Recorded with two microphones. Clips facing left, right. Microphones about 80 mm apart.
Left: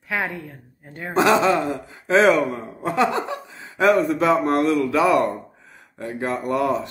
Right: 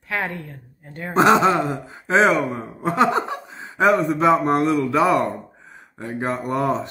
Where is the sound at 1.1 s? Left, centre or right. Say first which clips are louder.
Right 2 dB; right.